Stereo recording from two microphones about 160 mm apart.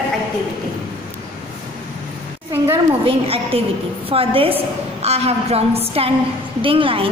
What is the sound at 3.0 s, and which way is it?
A woman's voice, 35° right (ahead or behind).